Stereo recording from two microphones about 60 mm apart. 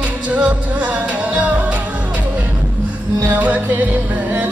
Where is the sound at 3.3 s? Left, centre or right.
Right.